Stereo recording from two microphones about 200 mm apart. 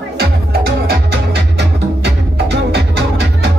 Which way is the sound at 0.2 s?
50° right (ahead or behind).